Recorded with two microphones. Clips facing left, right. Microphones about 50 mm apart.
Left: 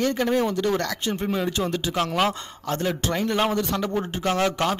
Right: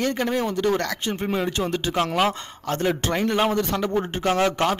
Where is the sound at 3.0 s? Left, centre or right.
Right.